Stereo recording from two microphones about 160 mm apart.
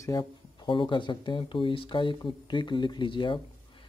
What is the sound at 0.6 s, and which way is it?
Speech, 30° left (ahead or behind).